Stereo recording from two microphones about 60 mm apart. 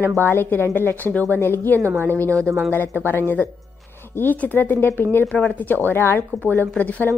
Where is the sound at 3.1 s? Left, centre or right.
Left.